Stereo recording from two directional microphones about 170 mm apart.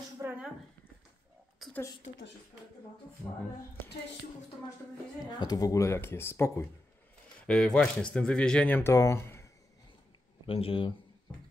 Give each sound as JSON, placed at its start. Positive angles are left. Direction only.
{"t": 0.2, "sound": "a sound", "side_deg": -10}
{"t": 1.6, "sound": "whispering", "side_deg": 0}
{"t": 5.2, "sound": "speech", "side_deg": 20}
{"t": 10.4, "sound": "speech", "side_deg": 35}